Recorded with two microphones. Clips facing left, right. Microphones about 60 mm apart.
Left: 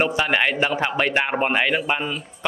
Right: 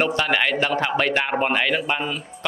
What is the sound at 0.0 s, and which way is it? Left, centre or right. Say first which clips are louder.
A man's voice: left 1 dB; centre.